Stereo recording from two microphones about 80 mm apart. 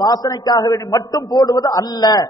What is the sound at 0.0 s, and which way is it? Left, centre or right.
A man's voice, left.